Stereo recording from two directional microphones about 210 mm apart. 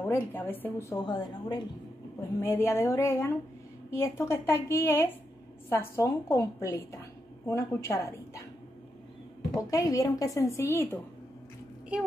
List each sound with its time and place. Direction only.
0.0 s a woman's voice: 10° left (ahead or behind)
9.6 s a woman's voice: 15° left (ahead or behind)